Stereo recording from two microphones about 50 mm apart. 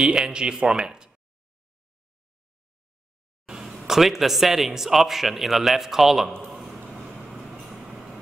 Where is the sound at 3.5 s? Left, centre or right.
Centre.